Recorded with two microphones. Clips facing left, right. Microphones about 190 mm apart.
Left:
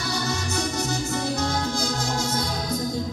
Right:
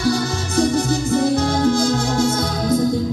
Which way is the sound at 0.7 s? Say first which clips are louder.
Right 9 dB; 55° right (ahead or behind).